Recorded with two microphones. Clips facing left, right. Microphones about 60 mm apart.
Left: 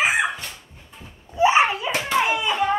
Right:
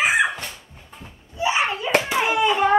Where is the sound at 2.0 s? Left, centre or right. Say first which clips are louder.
Right 1 dB; centre.